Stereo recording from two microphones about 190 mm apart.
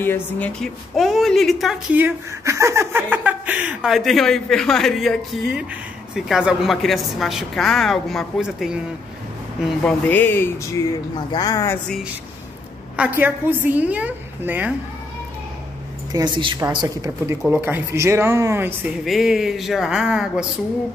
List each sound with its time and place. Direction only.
0.0 s a woman's voice: 10° left (ahead or behind)
9.8 s speech: 10° left (ahead or behind)
12.9 s speech: 10° right (ahead or behind)
16.1 s speech: 25° right (ahead or behind)
19.0 s a woman's voice: centre (ahead or behind)